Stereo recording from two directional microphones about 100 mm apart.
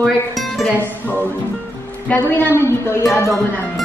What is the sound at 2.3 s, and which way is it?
A woman's voice, 20° left (ahead or behind).